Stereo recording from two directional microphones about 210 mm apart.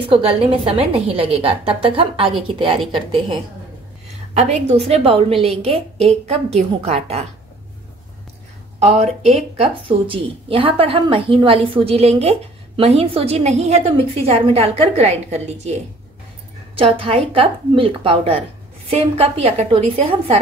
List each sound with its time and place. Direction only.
0.1 s speech: 25° right (ahead or behind)
4.3 s speech: 30° right (ahead or behind)
8.7 s speech: 30° right (ahead or behind)